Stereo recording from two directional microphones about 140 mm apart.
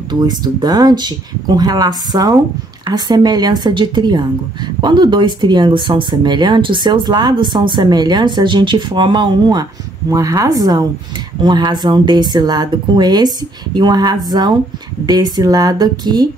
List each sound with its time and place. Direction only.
0.1 s speech: 30° right (ahead or behind)